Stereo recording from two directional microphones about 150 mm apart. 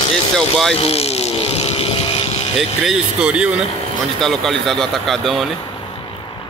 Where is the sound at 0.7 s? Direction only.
40° left (ahead or behind).